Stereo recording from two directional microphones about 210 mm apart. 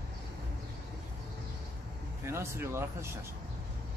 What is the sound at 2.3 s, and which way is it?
Speech, 10° right (ahead or behind).